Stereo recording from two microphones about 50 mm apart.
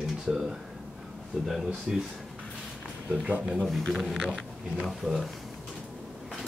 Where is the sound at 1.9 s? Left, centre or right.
Centre.